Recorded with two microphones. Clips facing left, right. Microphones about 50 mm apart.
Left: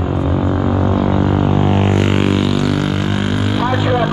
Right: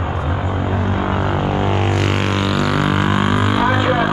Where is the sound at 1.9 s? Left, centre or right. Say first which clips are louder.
Left 3 dB; left.